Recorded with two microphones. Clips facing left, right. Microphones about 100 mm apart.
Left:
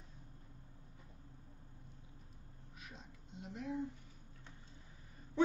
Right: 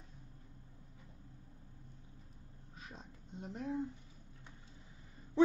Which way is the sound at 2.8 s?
35° right (ahead or behind).